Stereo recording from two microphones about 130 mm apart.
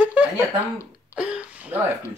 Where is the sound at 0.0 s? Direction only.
10° right (ahead or behind).